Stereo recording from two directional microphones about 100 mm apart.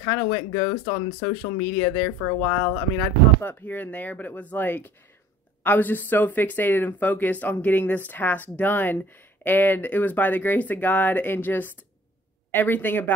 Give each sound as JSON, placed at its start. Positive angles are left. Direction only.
{"t": 0.0, "sound": "speech", "side_deg": 30}
{"t": 0.8, "sound": "speech", "side_deg": 45}
{"t": 1.8, "sound": "speech", "side_deg": 30}